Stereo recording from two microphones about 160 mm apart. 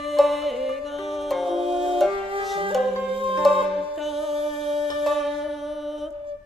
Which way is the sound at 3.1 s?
35° right (ahead or behind).